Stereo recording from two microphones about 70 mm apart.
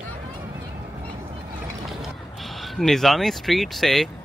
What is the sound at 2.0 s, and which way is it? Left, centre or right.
Speech, centre.